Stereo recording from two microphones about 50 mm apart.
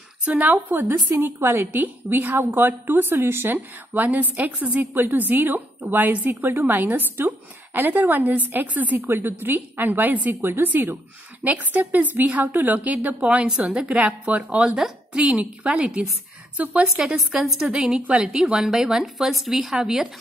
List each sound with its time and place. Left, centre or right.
0.4 s a woman's voice: right
0.7 s a woman's voice: right
1.7 s a woman's voice: right
4.9 s a woman's voice: right
14.8 s a woman's voice: right
16.8 s a woman's voice: centre